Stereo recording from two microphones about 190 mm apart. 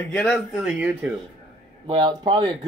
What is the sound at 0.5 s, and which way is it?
Speech, 5° right (ahead or behind).